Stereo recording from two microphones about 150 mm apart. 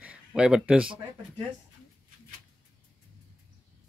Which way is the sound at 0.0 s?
5° right (ahead or behind).